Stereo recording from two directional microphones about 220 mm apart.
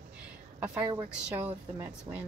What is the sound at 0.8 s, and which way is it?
A woman's voice, 20° right (ahead or behind).